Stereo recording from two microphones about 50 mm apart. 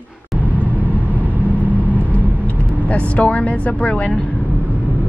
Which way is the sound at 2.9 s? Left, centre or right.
Left.